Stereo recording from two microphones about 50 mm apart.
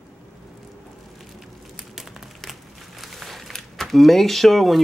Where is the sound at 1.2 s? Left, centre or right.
Centre.